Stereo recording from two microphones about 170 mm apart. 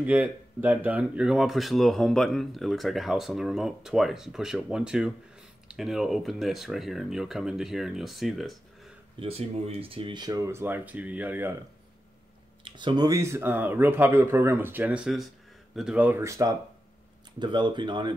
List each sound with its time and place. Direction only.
0.0 s speech: 10° right (ahead or behind)
9.2 s speech: 35° right (ahead or behind); by 11.5 s 10° right (ahead or behind)
12.6 s speech: 25° right (ahead or behind)